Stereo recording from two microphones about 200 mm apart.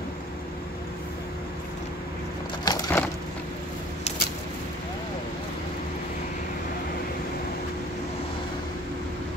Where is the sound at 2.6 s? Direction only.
20° left (ahead or behind).